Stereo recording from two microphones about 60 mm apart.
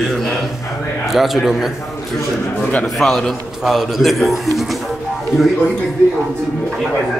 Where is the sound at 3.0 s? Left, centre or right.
Centre.